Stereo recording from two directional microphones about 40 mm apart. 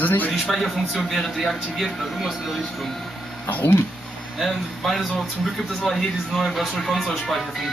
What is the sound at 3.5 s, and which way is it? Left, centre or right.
Speech, left.